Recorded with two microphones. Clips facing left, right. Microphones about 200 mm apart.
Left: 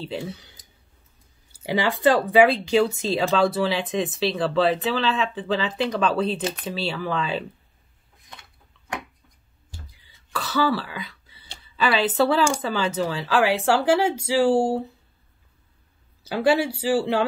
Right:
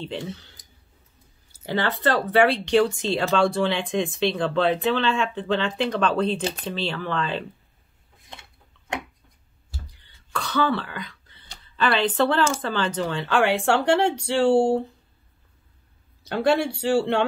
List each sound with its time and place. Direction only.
0.0 s speech: 5° left (ahead or behind)
1.5 s speech: 10° left (ahead or behind)
8.3 s a sound: 25° right (ahead or behind)
9.7 s throat clearing: 5° left (ahead or behind)
11.7 s speech: 5° left (ahead or behind)
16.3 s speech: 5° left (ahead or behind)